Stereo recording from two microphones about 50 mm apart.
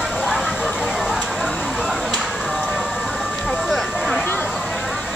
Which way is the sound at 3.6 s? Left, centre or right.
Centre.